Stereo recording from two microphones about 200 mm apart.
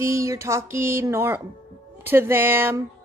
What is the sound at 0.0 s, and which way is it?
A woman's voice, 15° right (ahead or behind).